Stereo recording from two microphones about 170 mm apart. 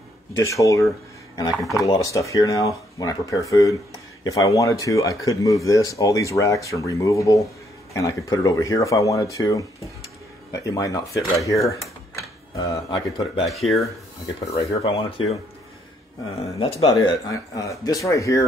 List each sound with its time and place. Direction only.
0.3 s speech: 20° left (ahead or behind)
1.6 s speech: centre (ahead or behind)
1.9 s speech: 20° left (ahead or behind)
13.5 s speech: centre (ahead or behind)
14.4 s speech: 35° left (ahead or behind)
16.5 s speech: 30° left (ahead or behind)
16.9 s speech: 20° left (ahead or behind)